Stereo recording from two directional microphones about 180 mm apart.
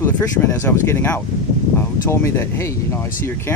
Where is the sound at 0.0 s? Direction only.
15° left (ahead or behind).